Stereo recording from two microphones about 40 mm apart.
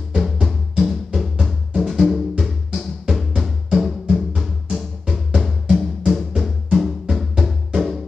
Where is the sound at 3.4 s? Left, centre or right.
Centre.